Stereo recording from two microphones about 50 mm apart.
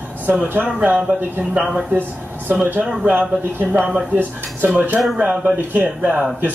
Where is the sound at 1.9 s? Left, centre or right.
Right.